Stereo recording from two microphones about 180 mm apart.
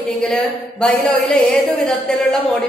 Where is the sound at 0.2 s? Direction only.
5° left (ahead or behind).